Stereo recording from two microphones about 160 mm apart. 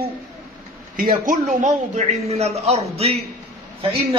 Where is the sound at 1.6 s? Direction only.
45° right (ahead or behind).